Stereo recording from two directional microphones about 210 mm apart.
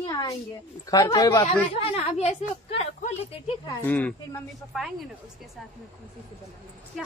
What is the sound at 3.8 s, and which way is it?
Speech, 10° left (ahead or behind).